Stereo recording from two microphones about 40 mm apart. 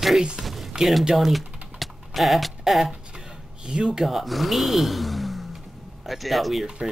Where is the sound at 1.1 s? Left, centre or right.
Centre.